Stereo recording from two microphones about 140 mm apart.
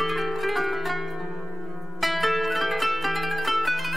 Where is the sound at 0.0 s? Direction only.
Centre (ahead or behind).